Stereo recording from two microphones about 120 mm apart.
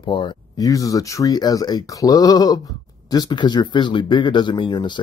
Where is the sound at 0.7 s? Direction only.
30° left (ahead or behind).